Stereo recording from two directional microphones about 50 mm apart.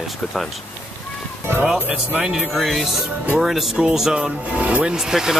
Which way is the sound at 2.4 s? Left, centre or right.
Centre.